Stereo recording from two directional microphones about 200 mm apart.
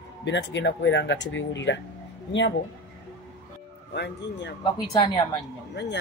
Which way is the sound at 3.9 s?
60° left (ahead or behind).